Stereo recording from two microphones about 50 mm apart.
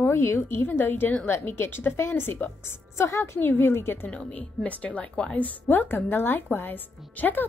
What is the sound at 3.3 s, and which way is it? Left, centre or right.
Speech, left.